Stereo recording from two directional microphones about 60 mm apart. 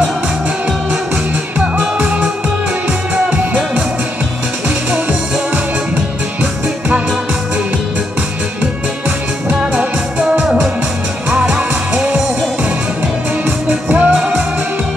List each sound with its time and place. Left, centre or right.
1.6 s music: right
9.5 s music: centre
13.7 s music: right